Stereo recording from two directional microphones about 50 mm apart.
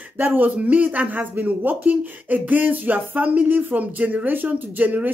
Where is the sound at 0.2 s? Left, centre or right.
Right.